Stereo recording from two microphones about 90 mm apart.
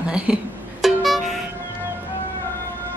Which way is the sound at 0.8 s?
Centre (ahead or behind).